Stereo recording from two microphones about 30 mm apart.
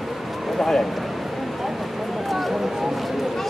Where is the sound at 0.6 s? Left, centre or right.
Centre.